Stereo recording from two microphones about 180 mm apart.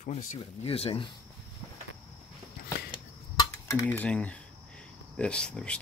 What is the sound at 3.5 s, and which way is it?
Speech, 10° left (ahead or behind).